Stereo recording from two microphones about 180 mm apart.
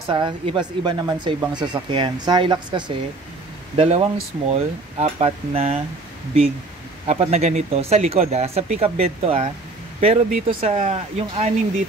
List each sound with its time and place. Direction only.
0.1 s speech: 30° right (ahead or behind)
7.1 s speech: 35° right (ahead or behind)